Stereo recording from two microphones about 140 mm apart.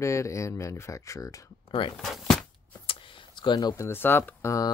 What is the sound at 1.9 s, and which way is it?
Speech, centre (ahead or behind).